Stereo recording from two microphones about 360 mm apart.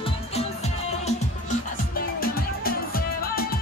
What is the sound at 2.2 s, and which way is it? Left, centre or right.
Music, left.